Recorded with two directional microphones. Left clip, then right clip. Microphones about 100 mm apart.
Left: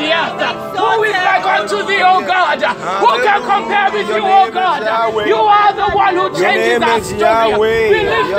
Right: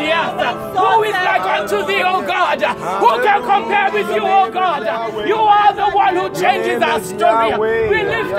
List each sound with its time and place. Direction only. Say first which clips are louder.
1.5 s speech: left 2 dB; 50° right (ahead or behind)
3.0 s music: left 1 dB; 40° right (ahead or behind)